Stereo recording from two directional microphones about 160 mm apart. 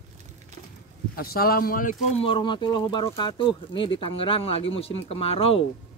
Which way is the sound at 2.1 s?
30° left (ahead or behind).